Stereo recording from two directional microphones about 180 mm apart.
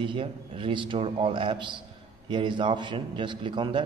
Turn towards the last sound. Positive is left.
turn(degrees=-25)  # may be behind; listen again after turning